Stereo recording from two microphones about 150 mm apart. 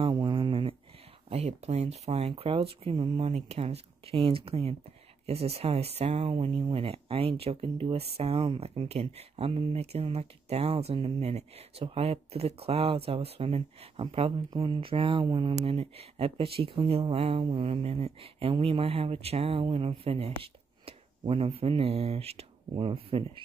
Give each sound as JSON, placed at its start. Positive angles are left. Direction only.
{"t": 0.0, "sound": "a sound", "side_deg": -30}
{"t": 1.3, "sound": "speech", "side_deg": -45}
{"t": 15.5, "sound": "speech", "side_deg": -40}